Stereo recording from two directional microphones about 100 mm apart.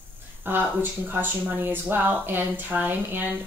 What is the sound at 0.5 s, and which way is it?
Speech, 20° right (ahead or behind).